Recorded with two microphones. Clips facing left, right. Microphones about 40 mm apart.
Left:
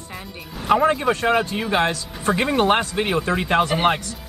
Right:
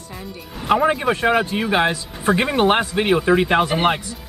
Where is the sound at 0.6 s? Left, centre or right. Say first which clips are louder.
Even; centre.